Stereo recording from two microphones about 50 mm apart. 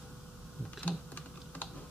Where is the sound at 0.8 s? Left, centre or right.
Left.